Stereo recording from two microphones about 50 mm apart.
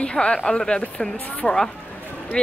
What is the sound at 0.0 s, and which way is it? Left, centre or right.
A woman's voice, left.